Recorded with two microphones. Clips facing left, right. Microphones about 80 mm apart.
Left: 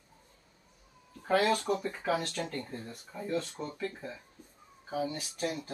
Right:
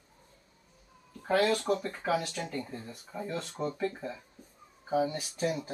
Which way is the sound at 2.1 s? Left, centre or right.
Centre.